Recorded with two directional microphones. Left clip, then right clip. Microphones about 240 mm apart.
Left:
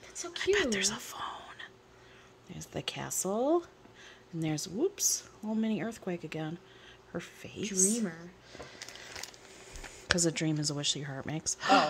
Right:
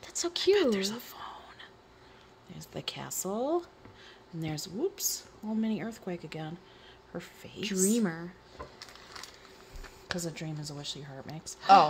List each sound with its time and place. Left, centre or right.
0.0 s a sound: right
0.5 s whispering: left
2.5 s a woman's voice: left
7.9 s speech: right
8.7 s a sound: centre
10.0 s speech: left